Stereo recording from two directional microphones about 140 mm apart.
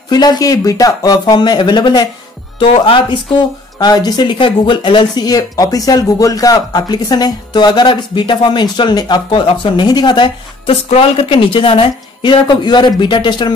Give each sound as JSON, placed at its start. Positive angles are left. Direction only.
{"t": 0.1, "sound": "a man's voice", "side_deg": 30}